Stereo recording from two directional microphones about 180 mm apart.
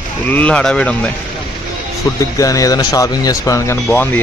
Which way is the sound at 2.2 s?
20° left (ahead or behind).